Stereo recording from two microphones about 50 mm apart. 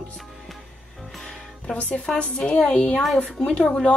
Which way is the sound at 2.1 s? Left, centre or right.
Centre.